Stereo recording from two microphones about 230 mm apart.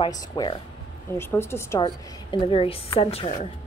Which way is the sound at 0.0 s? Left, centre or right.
Centre.